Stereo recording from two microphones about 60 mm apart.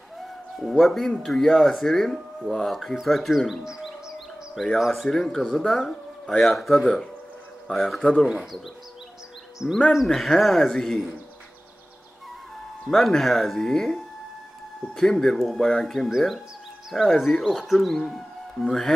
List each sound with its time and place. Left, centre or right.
0.6 s speech: centre
8.0 s speech: centre
8.3 s speech: centre
9.6 s speech: centre
9.9 s speech: centre
12.8 s speech: centre